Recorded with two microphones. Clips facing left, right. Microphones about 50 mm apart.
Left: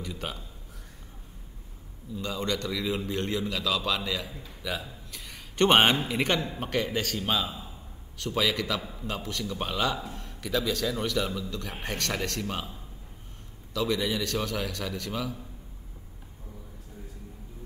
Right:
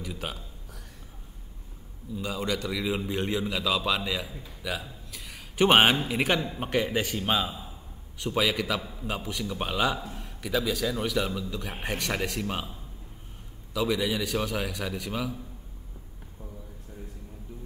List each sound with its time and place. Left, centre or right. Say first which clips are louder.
0.0 s a man's voice: even; centre
2.1 s a man's voice: even; centre
13.7 s a man's voice: right 1 dB; centre